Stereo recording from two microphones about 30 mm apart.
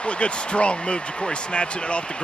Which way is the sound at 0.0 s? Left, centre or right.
Left.